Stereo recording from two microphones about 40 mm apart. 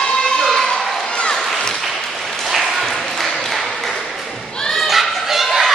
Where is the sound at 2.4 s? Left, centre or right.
Centre.